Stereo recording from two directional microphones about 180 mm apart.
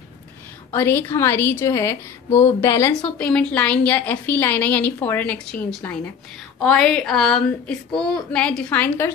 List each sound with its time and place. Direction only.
0.7 s a woman's voice: 10° left (ahead or behind)